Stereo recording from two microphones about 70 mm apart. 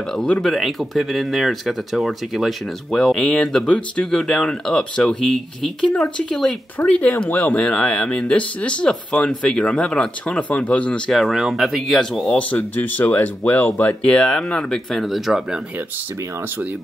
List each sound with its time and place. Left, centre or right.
0.4 s speech: centre
11.1 s speech: centre
12.4 s speech: left; by 15.6 s centre